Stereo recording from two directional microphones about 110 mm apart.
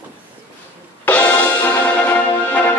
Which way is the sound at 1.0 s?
15° left (ahead or behind).